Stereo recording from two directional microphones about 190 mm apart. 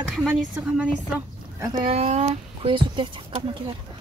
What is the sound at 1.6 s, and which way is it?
Speech, 25° right (ahead or behind).